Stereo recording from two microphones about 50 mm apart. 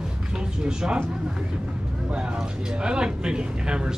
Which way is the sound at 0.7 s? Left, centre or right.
Centre.